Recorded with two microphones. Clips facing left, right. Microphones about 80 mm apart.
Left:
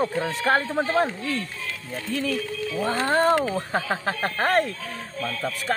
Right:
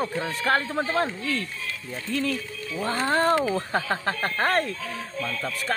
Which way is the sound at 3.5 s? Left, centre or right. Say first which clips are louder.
Even; centre.